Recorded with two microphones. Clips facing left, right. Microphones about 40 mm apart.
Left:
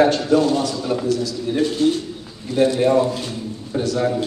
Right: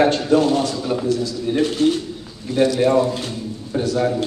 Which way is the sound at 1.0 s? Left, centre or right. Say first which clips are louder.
Right 1 dB; right.